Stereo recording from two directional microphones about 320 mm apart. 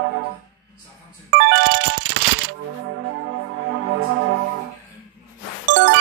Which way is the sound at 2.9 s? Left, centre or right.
Right.